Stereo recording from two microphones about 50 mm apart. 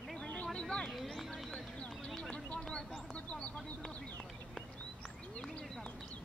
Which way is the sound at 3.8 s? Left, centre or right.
Centre.